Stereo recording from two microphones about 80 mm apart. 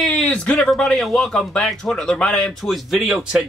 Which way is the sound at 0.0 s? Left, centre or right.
Centre.